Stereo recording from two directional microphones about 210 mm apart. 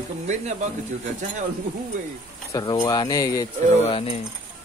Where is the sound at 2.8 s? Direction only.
20° left (ahead or behind).